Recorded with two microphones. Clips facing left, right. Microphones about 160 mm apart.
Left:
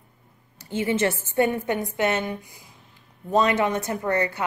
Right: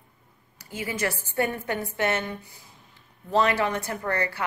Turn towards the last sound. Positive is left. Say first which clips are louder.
# left 4 dB
turn(degrees=20)  # may be behind; listen again after turning